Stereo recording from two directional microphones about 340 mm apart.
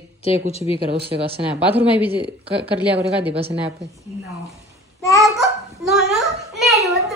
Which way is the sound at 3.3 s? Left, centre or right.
Centre.